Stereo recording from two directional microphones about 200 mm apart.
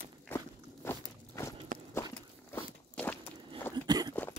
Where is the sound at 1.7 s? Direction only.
45° right (ahead or behind).